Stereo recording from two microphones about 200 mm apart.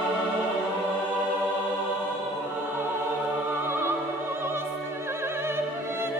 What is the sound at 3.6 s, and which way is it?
Opera, 10° right (ahead or behind).